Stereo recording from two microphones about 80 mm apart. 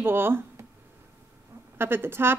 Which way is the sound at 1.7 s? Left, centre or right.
Right.